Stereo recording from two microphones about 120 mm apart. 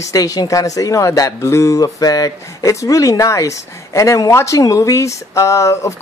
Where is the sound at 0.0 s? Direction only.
30° left (ahead or behind).